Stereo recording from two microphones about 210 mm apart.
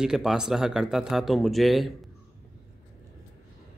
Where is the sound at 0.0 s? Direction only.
Centre (ahead or behind).